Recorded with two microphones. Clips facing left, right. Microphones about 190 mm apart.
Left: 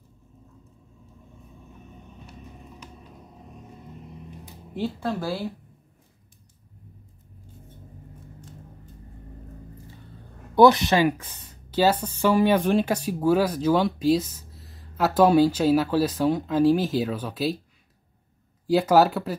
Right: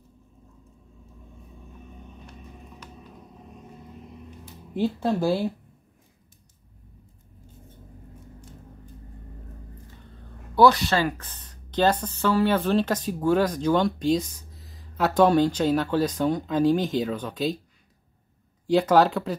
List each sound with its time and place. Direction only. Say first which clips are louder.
4.7 s speech: right 4 dB; 20° right (ahead or behind)
10.5 s speech: left 2 dB; 20° left (ahead or behind)
18.7 s speech: even; 5° left (ahead or behind)